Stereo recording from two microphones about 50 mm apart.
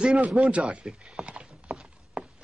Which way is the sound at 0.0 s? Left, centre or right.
Centre.